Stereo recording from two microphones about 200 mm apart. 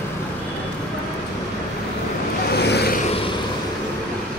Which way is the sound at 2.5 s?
55° left (ahead or behind).